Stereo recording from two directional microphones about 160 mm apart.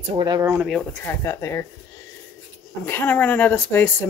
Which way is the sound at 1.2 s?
20° left (ahead or behind).